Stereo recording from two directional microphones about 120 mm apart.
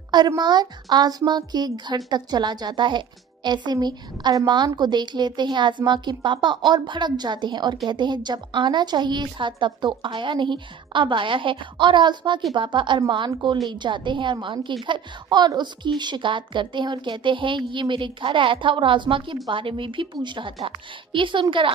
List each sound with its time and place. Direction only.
0.4 s a woman's voice: 35° right (ahead or behind)